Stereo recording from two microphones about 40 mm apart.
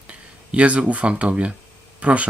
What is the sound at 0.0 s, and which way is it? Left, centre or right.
Speech, right.